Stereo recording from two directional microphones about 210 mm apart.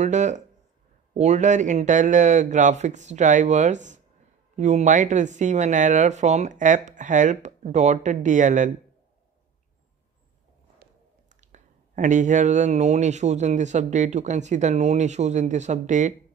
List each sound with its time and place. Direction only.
0.0 s speech: 35° right (ahead or behind)
11.4 s speech: 35° right (ahead or behind)